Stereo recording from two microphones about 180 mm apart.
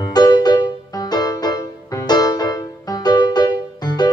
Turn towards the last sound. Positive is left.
turn(degrees=20)  # may be behind; listen again after turning